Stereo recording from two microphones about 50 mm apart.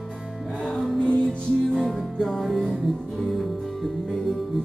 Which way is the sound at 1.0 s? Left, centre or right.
Centre.